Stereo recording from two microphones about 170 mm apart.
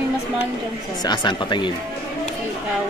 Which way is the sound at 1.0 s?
25° left (ahead or behind).